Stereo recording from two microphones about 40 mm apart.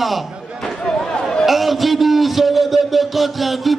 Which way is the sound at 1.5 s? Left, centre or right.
Centre.